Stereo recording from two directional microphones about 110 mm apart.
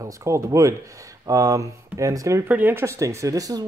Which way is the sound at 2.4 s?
15° right (ahead or behind).